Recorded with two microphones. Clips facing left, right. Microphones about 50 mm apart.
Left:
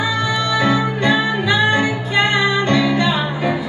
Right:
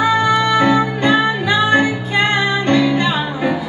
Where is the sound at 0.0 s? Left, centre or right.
Right.